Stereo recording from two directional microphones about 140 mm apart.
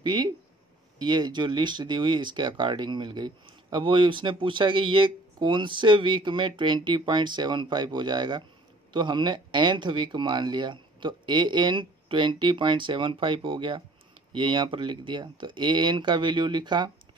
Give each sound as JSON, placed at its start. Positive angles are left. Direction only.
{"t": 0.0, "sound": "speech", "side_deg": -30}